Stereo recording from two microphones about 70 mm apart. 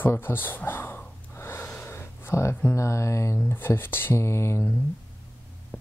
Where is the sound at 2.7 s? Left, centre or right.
Left.